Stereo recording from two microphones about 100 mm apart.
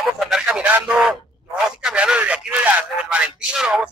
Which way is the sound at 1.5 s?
10° right (ahead or behind).